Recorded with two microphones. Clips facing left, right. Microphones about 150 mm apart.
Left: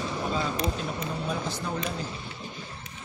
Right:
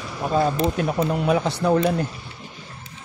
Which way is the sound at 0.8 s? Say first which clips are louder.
Right 10 dB; 75° right (ahead or behind).